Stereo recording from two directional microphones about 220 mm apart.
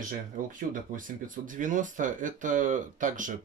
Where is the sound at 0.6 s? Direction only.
35° right (ahead or behind).